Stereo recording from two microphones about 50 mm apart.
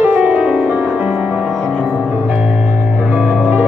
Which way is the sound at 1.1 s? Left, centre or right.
Centre.